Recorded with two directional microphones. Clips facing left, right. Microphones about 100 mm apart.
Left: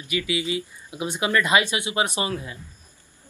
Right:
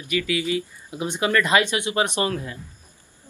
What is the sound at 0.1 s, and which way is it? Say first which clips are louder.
Speech: right 2 dB; 15° left (ahead or behind).